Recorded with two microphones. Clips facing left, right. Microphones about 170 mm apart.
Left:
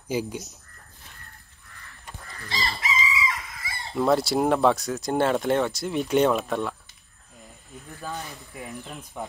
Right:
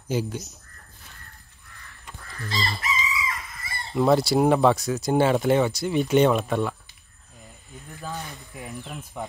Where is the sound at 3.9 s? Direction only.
Centre (ahead or behind).